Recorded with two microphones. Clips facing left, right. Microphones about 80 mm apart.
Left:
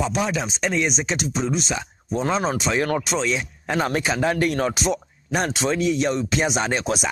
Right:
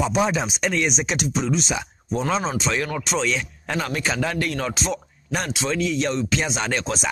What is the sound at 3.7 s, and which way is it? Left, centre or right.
Speech, left.